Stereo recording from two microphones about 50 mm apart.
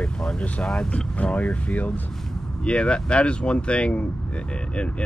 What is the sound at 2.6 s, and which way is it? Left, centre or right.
Speech, left.